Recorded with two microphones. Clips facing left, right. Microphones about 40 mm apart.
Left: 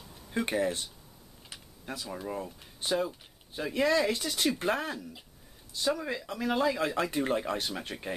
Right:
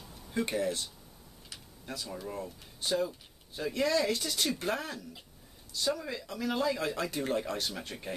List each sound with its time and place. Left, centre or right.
0.3 s speech: left
1.5 s typing: left
1.9 s speech: centre